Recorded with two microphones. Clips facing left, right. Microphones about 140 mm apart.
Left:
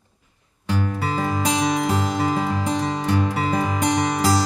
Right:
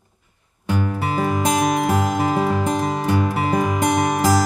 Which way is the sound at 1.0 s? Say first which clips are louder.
Right 2 dB; 15° right (ahead or behind).